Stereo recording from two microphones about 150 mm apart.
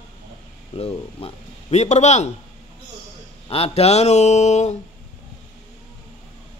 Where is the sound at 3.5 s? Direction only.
40° left (ahead or behind).